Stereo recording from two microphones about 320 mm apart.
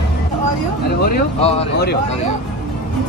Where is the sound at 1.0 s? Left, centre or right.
Left.